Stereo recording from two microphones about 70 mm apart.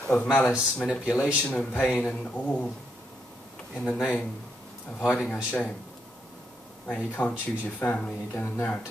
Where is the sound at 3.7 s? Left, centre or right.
Centre.